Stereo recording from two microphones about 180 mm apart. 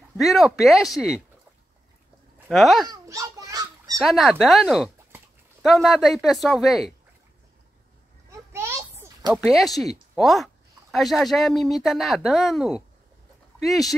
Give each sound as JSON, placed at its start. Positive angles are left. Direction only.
{"t": 0.2, "sound": "speech", "side_deg": 0}
{"t": 2.4, "sound": "speech", "side_deg": 0}
{"t": 2.9, "sound": "a sound", "side_deg": -20}
{"t": 4.0, "sound": "speech", "side_deg": 0}
{"t": 8.5, "sound": "a sound", "side_deg": -15}
{"t": 9.4, "sound": "speech", "side_deg": 0}